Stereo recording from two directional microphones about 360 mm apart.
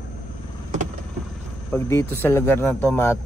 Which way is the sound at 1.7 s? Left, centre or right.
Centre.